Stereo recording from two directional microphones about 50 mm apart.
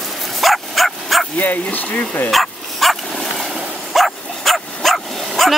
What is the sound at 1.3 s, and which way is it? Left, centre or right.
Speech, left.